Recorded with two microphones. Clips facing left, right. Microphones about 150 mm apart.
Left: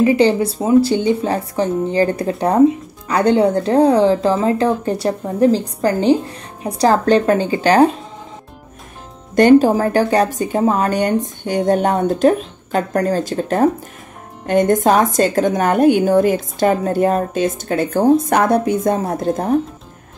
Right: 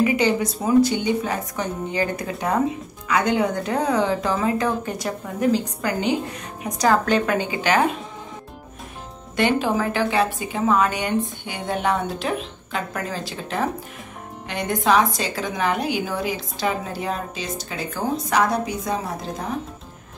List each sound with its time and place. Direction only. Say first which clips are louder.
0.0 s speech: left 6 dB; 30° left (ahead or behind)
9.3 s speech: left 11 dB; 45° left (ahead or behind)